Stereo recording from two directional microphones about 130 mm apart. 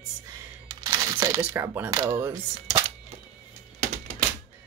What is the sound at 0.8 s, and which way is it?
Crumpling, 30° right (ahead or behind).